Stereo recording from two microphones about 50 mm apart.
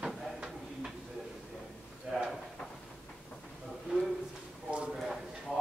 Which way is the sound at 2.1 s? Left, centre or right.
Centre.